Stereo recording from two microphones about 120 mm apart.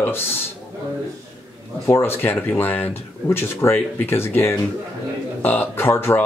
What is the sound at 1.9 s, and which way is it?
Speech, 20° left (ahead or behind).